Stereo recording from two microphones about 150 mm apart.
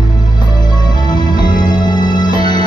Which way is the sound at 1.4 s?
30° left (ahead or behind).